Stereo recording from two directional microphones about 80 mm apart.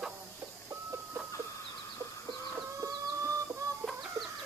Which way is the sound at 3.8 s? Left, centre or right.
Centre.